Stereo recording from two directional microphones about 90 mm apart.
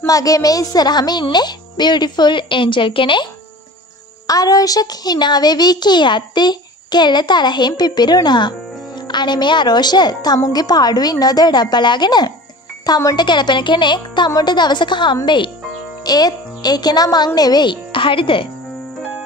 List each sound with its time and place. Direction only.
0.0 s speech: 40° left (ahead or behind); by 3.3 s 70° left (ahead or behind)
4.3 s a child's voice: 45° left (ahead or behind); by 15.5 s 65° left (ahead or behind)
16.0 s a child's voice: 45° left (ahead or behind); by 18.5 s 70° left (ahead or behind)